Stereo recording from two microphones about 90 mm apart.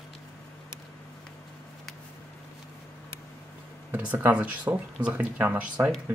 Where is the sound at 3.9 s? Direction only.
15° right (ahead or behind).